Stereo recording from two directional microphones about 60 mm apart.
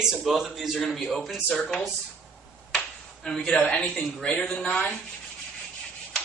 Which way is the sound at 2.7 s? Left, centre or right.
Centre.